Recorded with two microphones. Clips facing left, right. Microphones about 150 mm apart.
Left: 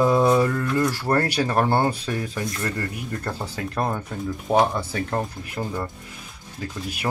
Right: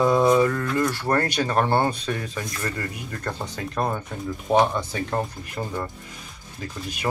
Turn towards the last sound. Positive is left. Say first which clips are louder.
# even
turn(degrees=5)  # may be behind; listen again after turning